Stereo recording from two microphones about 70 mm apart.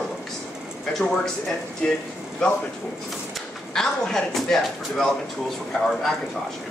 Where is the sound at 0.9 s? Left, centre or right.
Centre.